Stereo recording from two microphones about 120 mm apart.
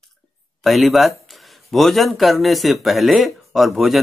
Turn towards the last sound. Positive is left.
turn(degrees=0)  # may be behind; listen again after turning